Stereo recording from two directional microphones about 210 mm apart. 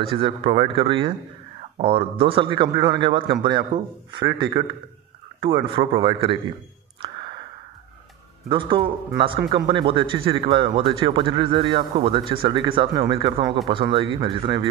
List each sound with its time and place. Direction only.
0.1 s a man's voice: 25° right (ahead or behind)
8.5 s a man's voice: 25° right (ahead or behind)